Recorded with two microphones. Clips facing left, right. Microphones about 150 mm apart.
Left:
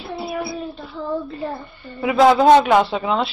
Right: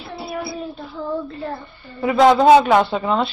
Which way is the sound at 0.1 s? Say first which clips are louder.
Left 2 dB; centre (ahead or behind).